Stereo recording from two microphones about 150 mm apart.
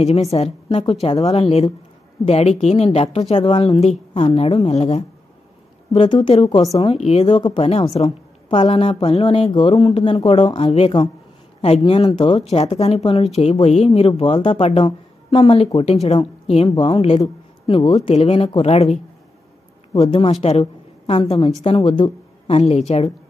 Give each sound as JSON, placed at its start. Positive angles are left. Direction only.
{"t": 0.0, "sound": "a woman's voice", "side_deg": 45}
{"t": 5.9, "sound": "a woman's voice", "side_deg": 35}
{"t": 20.0, "sound": "a woman's voice", "side_deg": 40}
{"t": 22.6, "sound": "speech", "side_deg": 45}